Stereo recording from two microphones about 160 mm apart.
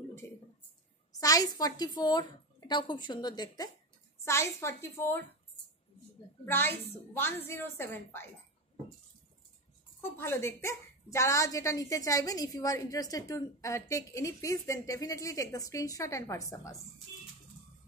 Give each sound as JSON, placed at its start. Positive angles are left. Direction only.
{"t": 1.2, "sound": "a woman's voice", "side_deg": 25}
{"t": 6.4, "sound": "a woman's voice", "side_deg": 15}
{"t": 10.1, "sound": "a woman's voice", "side_deg": 15}